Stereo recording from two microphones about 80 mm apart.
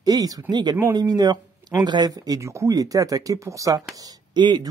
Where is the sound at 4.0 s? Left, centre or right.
Right.